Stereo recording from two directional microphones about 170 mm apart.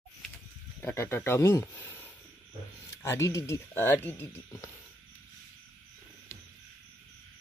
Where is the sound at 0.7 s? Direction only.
15° left (ahead or behind).